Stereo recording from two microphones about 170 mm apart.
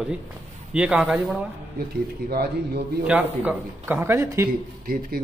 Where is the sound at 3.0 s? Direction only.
10° right (ahead or behind).